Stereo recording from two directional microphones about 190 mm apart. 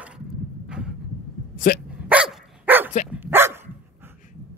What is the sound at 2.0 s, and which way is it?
Dog, 5° right (ahead or behind).